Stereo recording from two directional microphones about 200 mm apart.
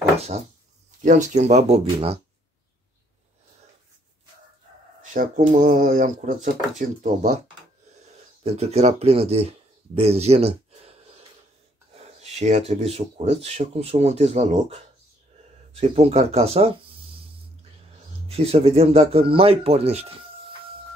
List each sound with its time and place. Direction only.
0.2 s speech: 35° right (ahead or behind)
5.1 s speech: 40° right (ahead or behind)
8.5 s speech: 30° right (ahead or behind)
18.3 s speech: 30° right (ahead or behind)